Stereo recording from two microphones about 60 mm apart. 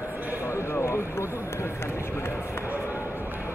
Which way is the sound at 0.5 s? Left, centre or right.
Left.